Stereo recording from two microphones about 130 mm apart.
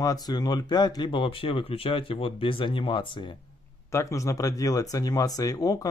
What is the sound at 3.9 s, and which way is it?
Speech, 25° left (ahead or behind).